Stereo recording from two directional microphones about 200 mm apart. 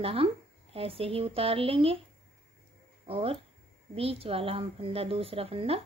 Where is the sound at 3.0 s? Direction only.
30° right (ahead or behind).